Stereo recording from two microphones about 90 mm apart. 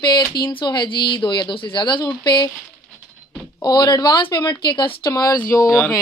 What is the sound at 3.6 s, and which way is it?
A woman's voice, 50° left (ahead or behind).